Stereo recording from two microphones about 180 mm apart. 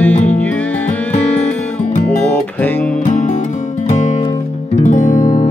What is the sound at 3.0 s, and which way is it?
Music, 40° left (ahead or behind).